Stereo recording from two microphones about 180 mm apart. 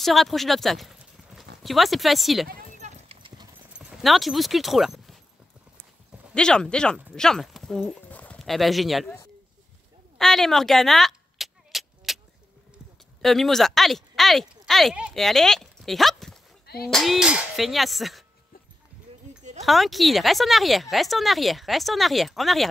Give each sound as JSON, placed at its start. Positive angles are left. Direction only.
{"t": 0.0, "sound": "speech", "side_deg": 0}
{"t": 3.1, "sound": "clip-clop", "side_deg": -25}
{"t": 3.7, "sound": "speech", "side_deg": 0}
{"t": 6.3, "sound": "speech", "side_deg": 5}
{"t": 10.1, "sound": "a sound", "side_deg": 0}
{"t": 13.2, "sound": "speech", "side_deg": 0}
{"t": 16.6, "sound": "a sound", "side_deg": 60}
{"t": 16.9, "sound": "speech", "side_deg": 0}
{"t": 19.6, "sound": "speech", "side_deg": 0}